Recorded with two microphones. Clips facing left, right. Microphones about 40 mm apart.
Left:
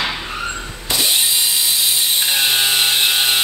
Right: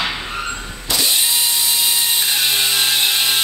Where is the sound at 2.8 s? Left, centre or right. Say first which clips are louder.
Left 1 dB; centre.